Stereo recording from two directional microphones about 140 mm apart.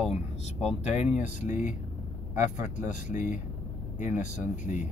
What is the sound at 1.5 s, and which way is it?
Speech, 65° left (ahead or behind).